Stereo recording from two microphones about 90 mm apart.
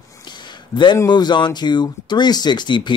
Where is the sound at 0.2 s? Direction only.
55° left (ahead or behind).